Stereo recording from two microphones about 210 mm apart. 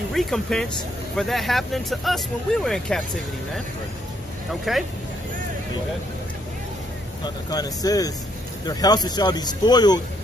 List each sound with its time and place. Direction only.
0.1 s speech: centre (ahead or behind)
4.7 s speech: centre (ahead or behind)
7.4 s speech: 20° left (ahead or behind)